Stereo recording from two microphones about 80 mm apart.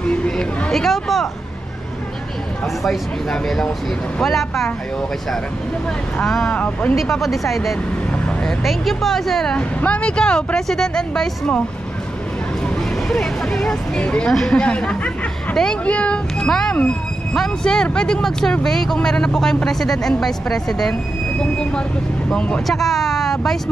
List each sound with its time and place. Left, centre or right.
0.1 s hubbub: centre
2.8 s a woman's voice: centre
6.1 s a woman's voice: centre
6.5 s speech: centre
7.0 s a woman's voice: centre
8.1 s vehicle: centre
8.6 s a woman's voice: centre
12.6 s speech: centre
22.7 s speech: centre